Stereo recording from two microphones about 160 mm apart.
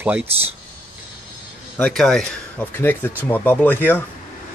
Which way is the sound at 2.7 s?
10° left (ahead or behind).